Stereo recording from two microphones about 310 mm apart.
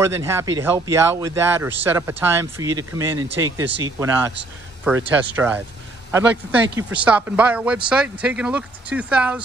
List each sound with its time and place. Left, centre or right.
0.0 s speech: centre
6.8 s speech: centre